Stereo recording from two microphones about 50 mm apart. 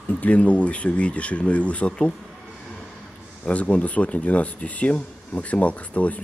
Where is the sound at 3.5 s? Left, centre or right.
Left.